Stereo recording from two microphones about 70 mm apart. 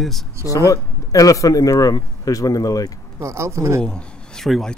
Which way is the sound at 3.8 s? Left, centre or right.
Centre.